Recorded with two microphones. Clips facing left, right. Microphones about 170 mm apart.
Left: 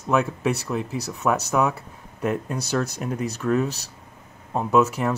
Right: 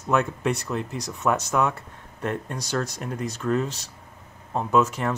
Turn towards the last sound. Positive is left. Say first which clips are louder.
# left 2 dB
turn(degrees=5)  # may be behind; listen again after turning